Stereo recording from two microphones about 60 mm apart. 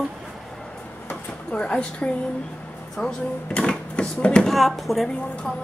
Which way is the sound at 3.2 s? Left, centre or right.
Left.